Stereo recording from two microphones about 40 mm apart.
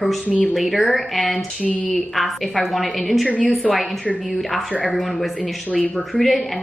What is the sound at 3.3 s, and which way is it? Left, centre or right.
Speech, left.